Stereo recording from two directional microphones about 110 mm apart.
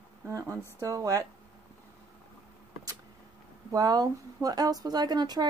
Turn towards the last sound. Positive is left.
turn(degrees=-35)  # may be behind; listen again after turning